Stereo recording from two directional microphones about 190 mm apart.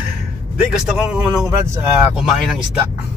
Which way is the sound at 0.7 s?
5° right (ahead or behind).